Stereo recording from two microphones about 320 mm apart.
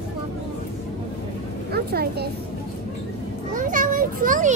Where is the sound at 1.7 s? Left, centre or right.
Right.